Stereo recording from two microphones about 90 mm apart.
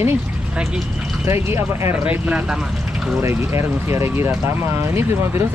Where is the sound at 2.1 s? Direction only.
15° right (ahead or behind).